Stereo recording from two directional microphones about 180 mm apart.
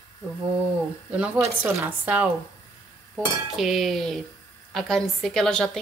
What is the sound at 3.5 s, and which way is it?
A woman's voice, centre (ahead or behind).